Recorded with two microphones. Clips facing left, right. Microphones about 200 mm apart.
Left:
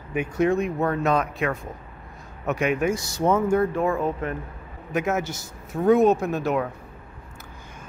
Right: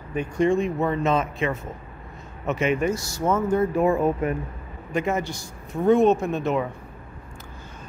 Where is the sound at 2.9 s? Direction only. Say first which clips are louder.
Left 2 dB; 15° left (ahead or behind).